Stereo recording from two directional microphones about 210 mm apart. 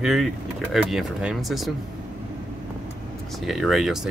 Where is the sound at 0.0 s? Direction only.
Centre (ahead or behind).